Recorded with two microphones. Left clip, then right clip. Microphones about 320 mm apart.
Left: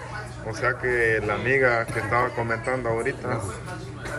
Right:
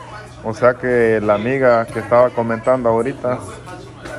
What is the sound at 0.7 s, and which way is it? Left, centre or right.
Speech, centre.